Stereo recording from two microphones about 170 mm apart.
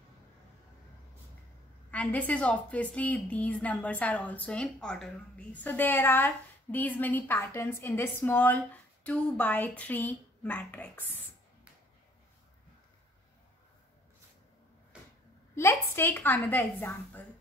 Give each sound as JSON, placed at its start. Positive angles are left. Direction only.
{"t": 1.9, "sound": "a woman's voice", "side_deg": 10}
{"t": 14.9, "sound": "a sound", "side_deg": -5}
{"t": 15.5, "sound": "a woman's voice", "side_deg": 15}